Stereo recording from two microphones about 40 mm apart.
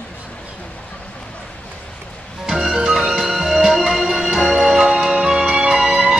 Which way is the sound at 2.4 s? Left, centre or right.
Centre.